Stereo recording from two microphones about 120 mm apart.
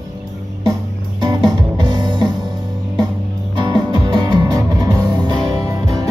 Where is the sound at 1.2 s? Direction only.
30° right (ahead or behind).